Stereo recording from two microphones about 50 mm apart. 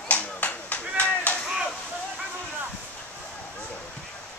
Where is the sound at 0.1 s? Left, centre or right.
Left.